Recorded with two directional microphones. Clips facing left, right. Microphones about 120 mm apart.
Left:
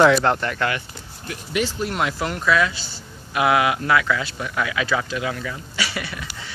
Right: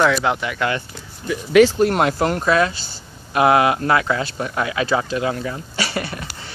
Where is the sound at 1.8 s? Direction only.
50° right (ahead or behind).